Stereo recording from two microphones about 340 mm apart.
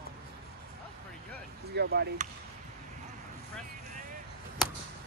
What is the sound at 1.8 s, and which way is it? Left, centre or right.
Speech, right.